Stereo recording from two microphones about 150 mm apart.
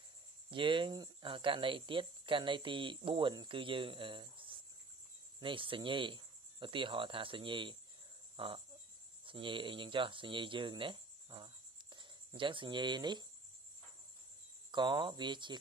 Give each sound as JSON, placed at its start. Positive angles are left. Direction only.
{"t": 0.5, "sound": "speech", "side_deg": -35}
{"t": 9.2, "sound": "speech", "side_deg": -35}
{"t": 14.7, "sound": "speech", "side_deg": -30}